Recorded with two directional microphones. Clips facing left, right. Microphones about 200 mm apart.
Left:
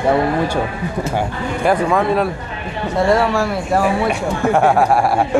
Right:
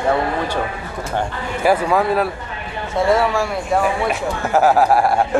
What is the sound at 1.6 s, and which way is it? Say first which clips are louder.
Speech: even; 5° right (ahead or behind).